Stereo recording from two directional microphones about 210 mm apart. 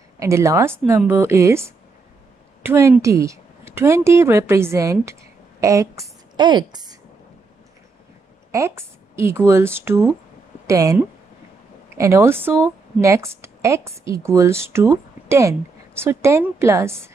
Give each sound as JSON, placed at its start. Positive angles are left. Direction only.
{"t": 0.2, "sound": "a woman's voice", "side_deg": -15}
{"t": 8.5, "sound": "a woman's voice", "side_deg": -15}